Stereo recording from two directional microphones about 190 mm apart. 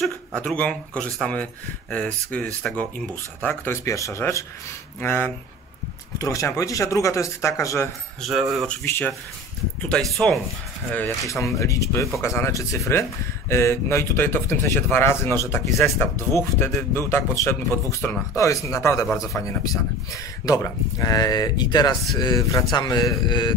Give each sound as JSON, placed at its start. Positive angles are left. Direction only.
{"t": 0.0, "sound": "speech", "side_deg": 5}
{"t": 8.2, "sound": "speech", "side_deg": 0}
{"t": 8.6, "sound": "speech", "side_deg": 10}